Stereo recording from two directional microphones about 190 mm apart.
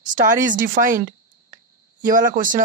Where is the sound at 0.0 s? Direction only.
45° right (ahead or behind).